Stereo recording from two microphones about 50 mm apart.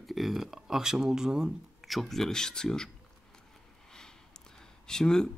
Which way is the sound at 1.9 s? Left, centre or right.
Centre.